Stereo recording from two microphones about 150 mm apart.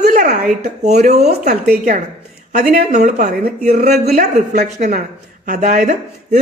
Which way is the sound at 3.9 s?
90° right.